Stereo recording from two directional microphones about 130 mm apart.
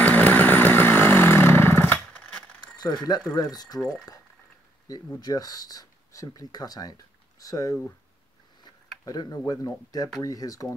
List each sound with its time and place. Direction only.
0.0 s vehicle: 10° left (ahead or behind)
2.0 s a sound: 10° left (ahead or behind)
2.6 s a sound: 35° left (ahead or behind)
3.3 s speech: 30° left (ahead or behind)
4.8 s speech: 30° left (ahead or behind)
9.0 s speech: 30° left (ahead or behind)